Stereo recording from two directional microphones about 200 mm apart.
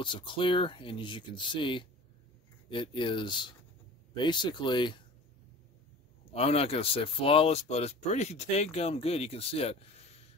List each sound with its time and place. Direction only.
0.0 s speech: 25° left (ahead or behind)
6.3 s speech: 30° left (ahead or behind)